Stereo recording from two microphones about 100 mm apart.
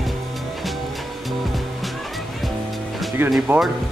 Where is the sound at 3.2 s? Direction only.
20° right (ahead or behind).